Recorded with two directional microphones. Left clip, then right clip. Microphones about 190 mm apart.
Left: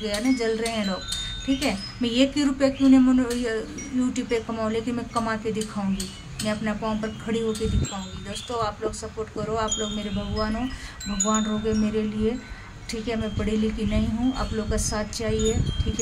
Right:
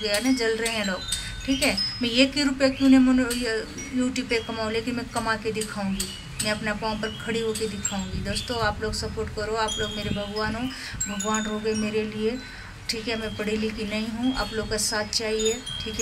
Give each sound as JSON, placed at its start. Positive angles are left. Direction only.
{"t": 0.0, "sound": "speech", "side_deg": 5}
{"t": 6.4, "sound": "speech", "side_deg": 5}